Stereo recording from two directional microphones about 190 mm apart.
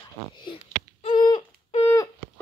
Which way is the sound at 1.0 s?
25° left (ahead or behind).